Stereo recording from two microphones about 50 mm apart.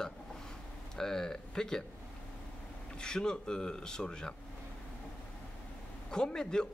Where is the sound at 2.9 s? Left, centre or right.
Centre.